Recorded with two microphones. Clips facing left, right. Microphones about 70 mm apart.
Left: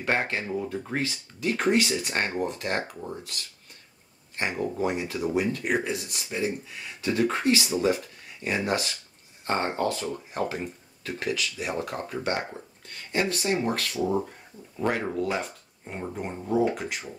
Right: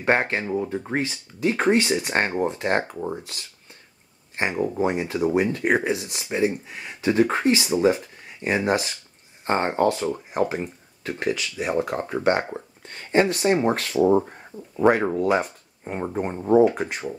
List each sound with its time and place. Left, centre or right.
0.0 s speech: right
4.4 s speech: right
10.1 s speech: centre
11.1 s speech: right
14.8 s speech: centre
15.8 s speech: right